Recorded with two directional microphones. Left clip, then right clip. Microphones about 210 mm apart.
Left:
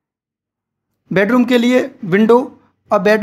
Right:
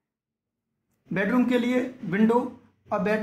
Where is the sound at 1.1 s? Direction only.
40° left (ahead or behind).